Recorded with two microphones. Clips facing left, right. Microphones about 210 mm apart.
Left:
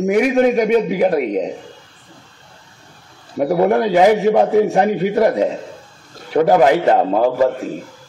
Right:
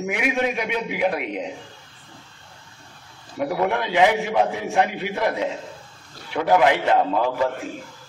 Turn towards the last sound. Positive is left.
turn(degrees=40)  # may be behind; listen again after turning